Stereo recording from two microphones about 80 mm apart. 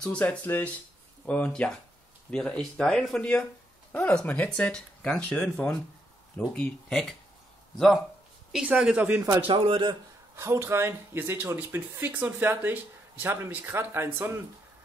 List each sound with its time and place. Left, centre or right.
0.1 s speech: centre
7.7 s speech: centre
8.9 s speech: right
9.5 s speech: right
10.3 s speech: right